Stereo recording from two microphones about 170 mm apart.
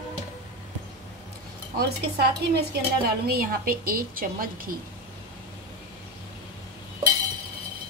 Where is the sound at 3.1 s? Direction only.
60° right (ahead or behind).